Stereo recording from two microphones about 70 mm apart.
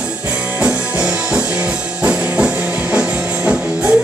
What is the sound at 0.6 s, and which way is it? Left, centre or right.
Music, centre.